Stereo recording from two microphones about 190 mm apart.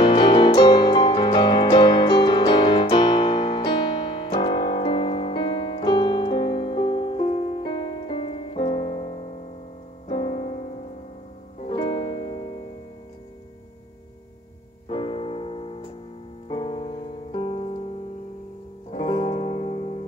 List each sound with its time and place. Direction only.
0.0 s music: 25° left (ahead or behind)
14.9 s piano: 30° left (ahead or behind)
16.4 s music: 25° left (ahead or behind)
18.9 s music: 30° left (ahead or behind)